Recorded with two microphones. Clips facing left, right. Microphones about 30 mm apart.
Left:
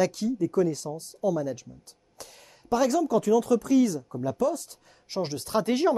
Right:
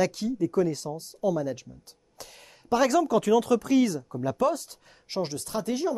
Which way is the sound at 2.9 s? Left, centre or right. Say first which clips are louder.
Even; right.